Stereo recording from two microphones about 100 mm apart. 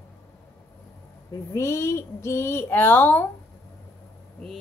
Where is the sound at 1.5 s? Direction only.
30° left (ahead or behind).